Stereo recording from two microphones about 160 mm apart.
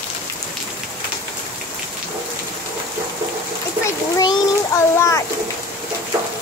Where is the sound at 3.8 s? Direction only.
20° left (ahead or behind).